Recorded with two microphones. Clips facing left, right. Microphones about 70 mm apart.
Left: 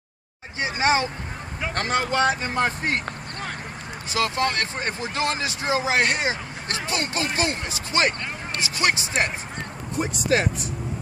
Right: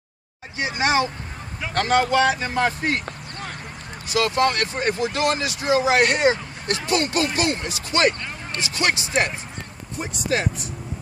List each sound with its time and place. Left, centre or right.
0.6 s speech: left
4.1 s speech: left